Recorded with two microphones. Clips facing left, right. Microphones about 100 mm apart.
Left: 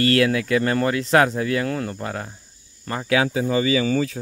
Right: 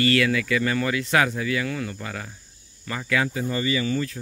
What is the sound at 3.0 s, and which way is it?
Speech, 60° left (ahead or behind).